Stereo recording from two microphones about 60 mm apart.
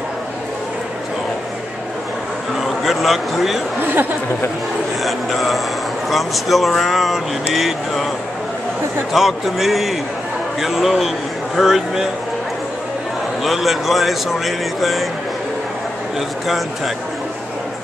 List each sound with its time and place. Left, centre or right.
2.6 s speech: centre
3.8 s speech: right
5.0 s speech: centre
9.1 s speech: centre
13.4 s speech: centre
16.2 s speech: centre